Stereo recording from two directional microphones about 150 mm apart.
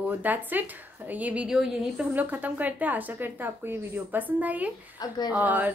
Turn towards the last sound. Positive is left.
turn(degrees=-10)  # may be behind; listen again after turning